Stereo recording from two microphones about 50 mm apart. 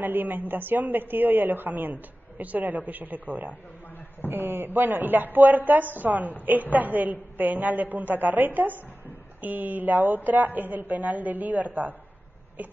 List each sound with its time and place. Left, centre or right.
0.0 s a woman's voice: right